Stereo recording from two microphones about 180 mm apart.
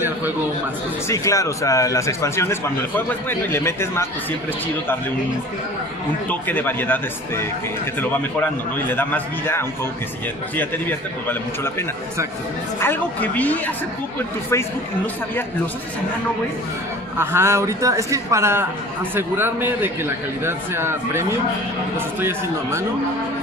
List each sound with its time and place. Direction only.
1.0 s a man's voice: 15° left (ahead or behind)
6.2 s a man's voice: 10° left (ahead or behind)
8.7 s a man's voice: 10° left (ahead or behind)
12.8 s a man's voice: 10° left (ahead or behind)
17.2 s a man's voice: 15° right (ahead or behind)